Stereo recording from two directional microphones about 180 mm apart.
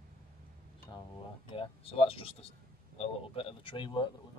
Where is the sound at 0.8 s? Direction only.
25° left (ahead or behind).